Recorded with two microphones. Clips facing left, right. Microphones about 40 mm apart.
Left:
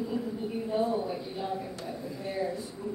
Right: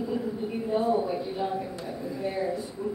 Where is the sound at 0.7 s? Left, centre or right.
Centre.